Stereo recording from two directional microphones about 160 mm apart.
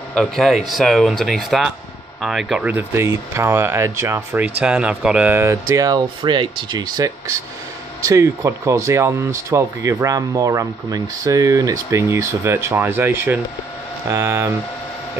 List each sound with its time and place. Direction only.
0.1 s speech: centre (ahead or behind); by 14.5 s 15° right (ahead or behind)